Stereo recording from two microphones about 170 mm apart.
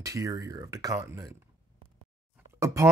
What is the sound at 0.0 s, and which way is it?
Speech, 20° right (ahead or behind).